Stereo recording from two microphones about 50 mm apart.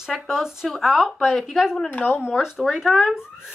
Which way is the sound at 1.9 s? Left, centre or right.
Left.